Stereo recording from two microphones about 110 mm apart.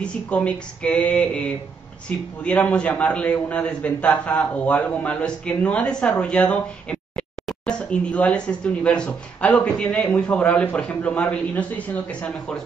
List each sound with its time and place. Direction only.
0.0 s a man's voice: 10° left (ahead or behind)